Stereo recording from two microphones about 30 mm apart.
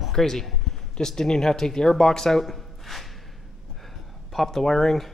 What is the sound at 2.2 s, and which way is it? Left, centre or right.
Speech, centre.